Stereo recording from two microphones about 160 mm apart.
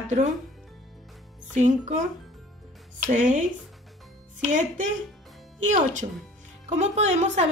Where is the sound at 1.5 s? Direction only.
50° right (ahead or behind).